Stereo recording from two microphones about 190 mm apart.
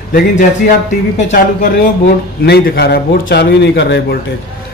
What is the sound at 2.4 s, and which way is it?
Speech, 60° left (ahead or behind).